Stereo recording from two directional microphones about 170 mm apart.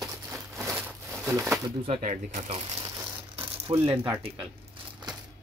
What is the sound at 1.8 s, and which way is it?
Speech, 45° right (ahead or behind).